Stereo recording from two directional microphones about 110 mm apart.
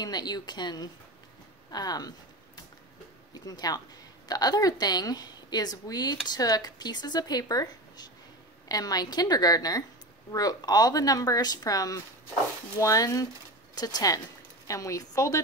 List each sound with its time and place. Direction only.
0.0 s a woman's voice: 40° left (ahead or behind)
3.3 s a woman's voice: 35° left (ahead or behind)